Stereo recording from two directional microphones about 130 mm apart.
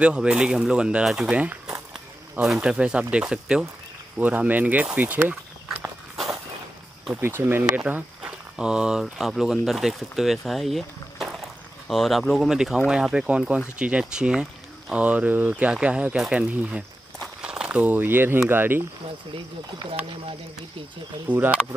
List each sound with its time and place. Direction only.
0.0 s speech: 5° right (ahead or behind)
7.2 s speech: 15° right (ahead or behind)
19.3 s speech: 40° right (ahead or behind)
21.3 s speech: 10° right (ahead or behind)